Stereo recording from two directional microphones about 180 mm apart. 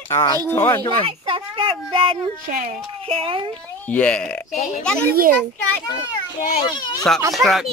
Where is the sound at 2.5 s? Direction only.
50° right (ahead or behind).